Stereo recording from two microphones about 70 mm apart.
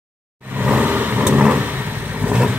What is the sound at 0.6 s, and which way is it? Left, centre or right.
Vehicle, right.